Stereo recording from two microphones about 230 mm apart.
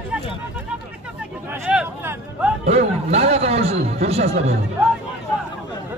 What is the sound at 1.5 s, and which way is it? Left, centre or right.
Speech, centre.